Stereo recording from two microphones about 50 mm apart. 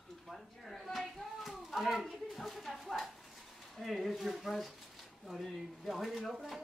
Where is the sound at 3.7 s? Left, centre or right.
Centre.